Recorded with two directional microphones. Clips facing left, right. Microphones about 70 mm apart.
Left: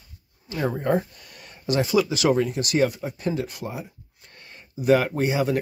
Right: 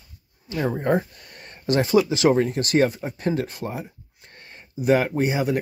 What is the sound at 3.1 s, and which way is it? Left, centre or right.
Speech, right.